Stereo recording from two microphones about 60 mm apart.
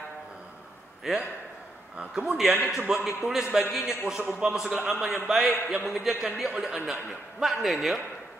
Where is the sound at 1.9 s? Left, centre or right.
Centre.